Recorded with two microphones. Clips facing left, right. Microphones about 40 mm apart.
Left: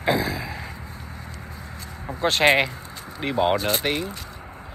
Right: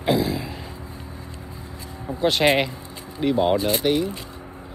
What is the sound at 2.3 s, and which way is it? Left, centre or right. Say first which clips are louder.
Speech: left 2 dB; left.